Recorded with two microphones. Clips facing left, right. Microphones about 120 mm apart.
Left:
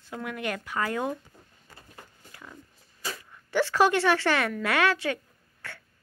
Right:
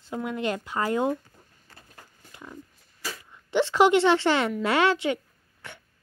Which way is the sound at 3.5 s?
20° right (ahead or behind).